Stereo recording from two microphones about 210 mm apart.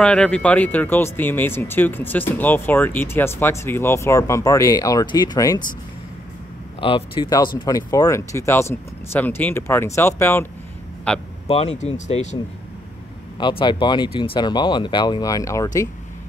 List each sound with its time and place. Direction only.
0.0 s speech: 5° left (ahead or behind)
6.8 s speech: 25° left (ahead or behind); by 11.2 s 5° left (ahead or behind)
11.4 s speech: 30° left (ahead or behind)
13.4 s speech: 25° left (ahead or behind)